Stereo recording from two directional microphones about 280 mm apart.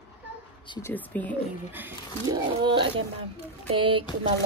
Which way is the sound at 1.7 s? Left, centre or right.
Centre.